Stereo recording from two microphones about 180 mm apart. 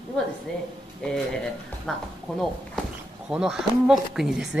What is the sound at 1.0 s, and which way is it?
Speech, 5° left (ahead or behind).